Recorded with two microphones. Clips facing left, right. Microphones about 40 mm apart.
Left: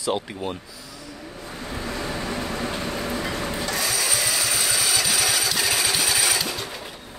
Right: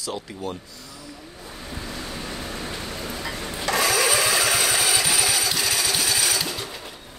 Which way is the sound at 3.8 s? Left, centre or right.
Right.